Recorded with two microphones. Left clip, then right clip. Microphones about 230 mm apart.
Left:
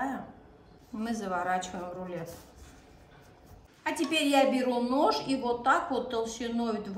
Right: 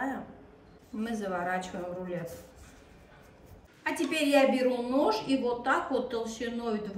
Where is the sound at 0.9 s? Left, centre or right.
Centre.